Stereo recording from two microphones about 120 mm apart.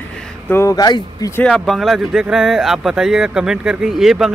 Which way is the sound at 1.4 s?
5° left (ahead or behind).